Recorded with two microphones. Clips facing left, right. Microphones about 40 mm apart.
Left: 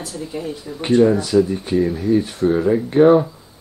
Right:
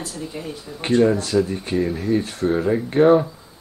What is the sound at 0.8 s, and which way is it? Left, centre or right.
Speech, centre.